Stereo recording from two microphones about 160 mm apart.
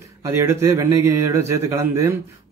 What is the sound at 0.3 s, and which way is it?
A man's voice, 15° right (ahead or behind).